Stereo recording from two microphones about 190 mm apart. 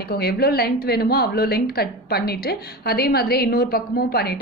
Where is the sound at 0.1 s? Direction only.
55° left (ahead or behind).